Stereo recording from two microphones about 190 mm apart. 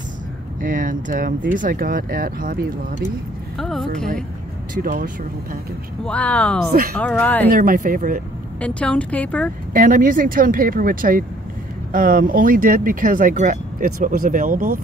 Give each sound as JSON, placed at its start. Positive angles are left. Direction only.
{"t": 0.6, "sound": "speech", "side_deg": -45}
{"t": 3.5, "sound": "speech", "side_deg": 0}
{"t": 4.7, "sound": "speech", "side_deg": -45}
{"t": 6.0, "sound": "a woman's voice", "side_deg": 5}
{"t": 6.7, "sound": "speech", "side_deg": -55}
{"t": 7.0, "sound": "a woman's voice", "side_deg": 10}
{"t": 7.4, "sound": "speech", "side_deg": -50}
{"t": 8.5, "sound": "a woman's voice", "side_deg": 5}
{"t": 9.8, "sound": "speech", "side_deg": -45}